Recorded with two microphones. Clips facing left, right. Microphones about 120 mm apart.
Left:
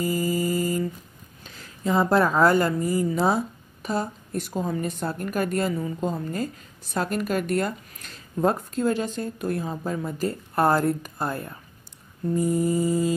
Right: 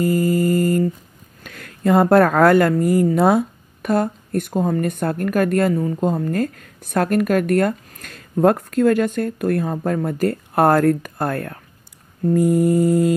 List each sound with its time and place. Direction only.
0.0 s mantra: 50° right (ahead or behind)
1.4 s speech: 60° right (ahead or behind)